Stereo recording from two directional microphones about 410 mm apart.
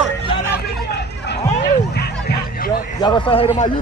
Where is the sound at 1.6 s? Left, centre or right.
Left.